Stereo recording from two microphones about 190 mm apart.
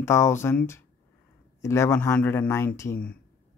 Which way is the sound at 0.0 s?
15° left (ahead or behind).